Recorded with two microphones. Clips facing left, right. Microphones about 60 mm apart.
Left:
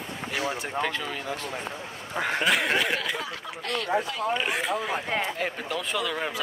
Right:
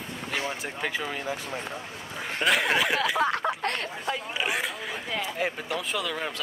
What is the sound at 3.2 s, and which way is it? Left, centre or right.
Speech, right.